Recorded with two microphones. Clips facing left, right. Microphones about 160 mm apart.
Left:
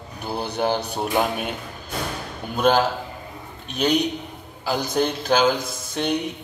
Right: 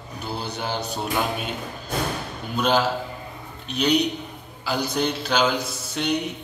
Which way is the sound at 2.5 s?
50° left (ahead or behind).